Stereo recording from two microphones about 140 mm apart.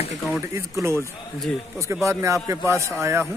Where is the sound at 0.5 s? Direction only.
20° right (ahead or behind).